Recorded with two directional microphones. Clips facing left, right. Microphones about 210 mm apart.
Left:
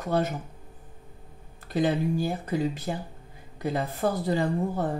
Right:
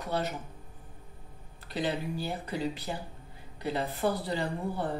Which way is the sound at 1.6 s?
45° left (ahead or behind).